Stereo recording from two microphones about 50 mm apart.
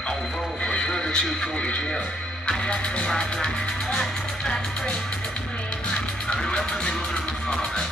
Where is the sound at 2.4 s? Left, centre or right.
Centre.